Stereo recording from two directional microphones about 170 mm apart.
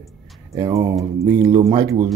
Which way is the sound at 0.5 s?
20° right (ahead or behind).